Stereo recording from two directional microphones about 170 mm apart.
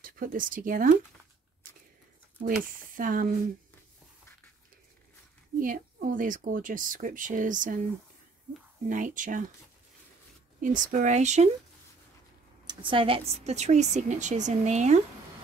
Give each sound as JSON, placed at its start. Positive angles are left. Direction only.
{"t": 0.0, "sound": "speech", "side_deg": -55}
{"t": 3.0, "sound": "speech", "side_deg": -55}
{"t": 5.6, "sound": "speech", "side_deg": -55}
{"t": 8.8, "sound": "speech", "side_deg": -50}
{"t": 10.6, "sound": "speech", "side_deg": -50}
{"t": 12.6, "sound": "a woman's voice", "side_deg": -30}